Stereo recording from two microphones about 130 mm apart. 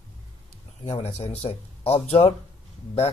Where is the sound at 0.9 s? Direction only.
50° left (ahead or behind).